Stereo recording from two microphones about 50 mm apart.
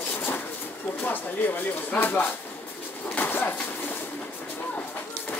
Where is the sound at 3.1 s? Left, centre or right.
Left.